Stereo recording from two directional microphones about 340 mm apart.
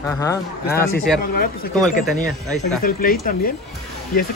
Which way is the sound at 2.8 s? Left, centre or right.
Left.